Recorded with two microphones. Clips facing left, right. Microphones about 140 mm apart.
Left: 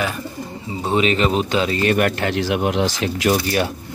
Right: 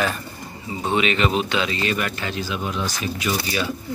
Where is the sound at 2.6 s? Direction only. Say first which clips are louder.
Left 7 dB; 80° left.